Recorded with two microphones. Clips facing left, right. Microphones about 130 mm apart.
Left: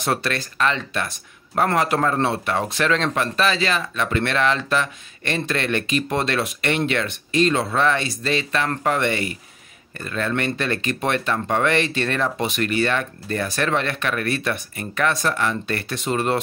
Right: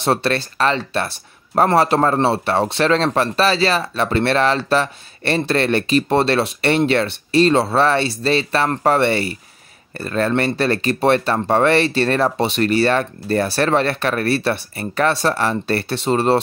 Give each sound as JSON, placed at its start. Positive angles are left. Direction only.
{"t": 0.0, "sound": "speech", "side_deg": -30}